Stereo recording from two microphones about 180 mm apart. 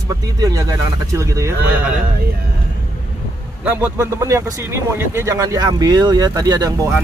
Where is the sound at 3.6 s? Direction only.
10° right (ahead or behind).